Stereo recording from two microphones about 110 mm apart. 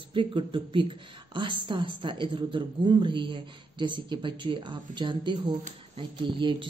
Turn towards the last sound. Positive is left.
turn(degrees=-50)  # may be behind; listen again after turning